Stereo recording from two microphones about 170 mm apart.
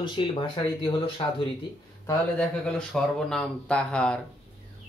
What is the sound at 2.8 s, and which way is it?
Speech, 5° left (ahead or behind).